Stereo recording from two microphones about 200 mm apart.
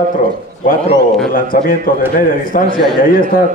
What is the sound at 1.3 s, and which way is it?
A man's voice, 45° left (ahead or behind).